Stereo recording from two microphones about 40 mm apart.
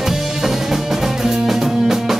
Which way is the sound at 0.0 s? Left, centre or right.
Centre.